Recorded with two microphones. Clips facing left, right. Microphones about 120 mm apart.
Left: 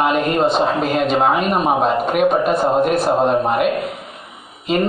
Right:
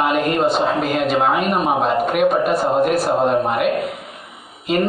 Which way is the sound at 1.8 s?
20° left (ahead or behind).